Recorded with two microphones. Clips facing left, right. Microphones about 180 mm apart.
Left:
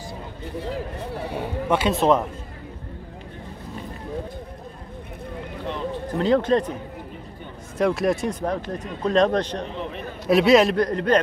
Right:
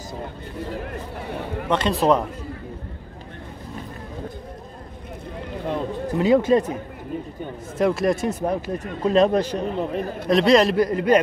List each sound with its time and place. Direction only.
1.7 s a man's voice: 5° left (ahead or behind)
6.1 s speech: 10° right (ahead or behind)
7.7 s speech: centre (ahead or behind)
9.8 s a man's voice: 40° right (ahead or behind)
10.2 s a man's voice: 5° left (ahead or behind)